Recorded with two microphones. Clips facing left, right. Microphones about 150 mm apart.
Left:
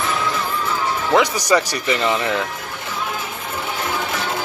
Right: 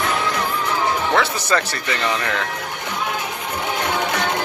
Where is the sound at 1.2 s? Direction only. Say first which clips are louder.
Left 3 dB; 15° left (ahead or behind).